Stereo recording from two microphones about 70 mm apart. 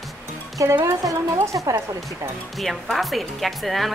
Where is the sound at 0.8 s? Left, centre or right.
Right.